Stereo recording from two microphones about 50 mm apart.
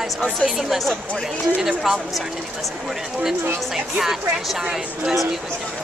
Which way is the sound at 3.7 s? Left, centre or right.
Centre.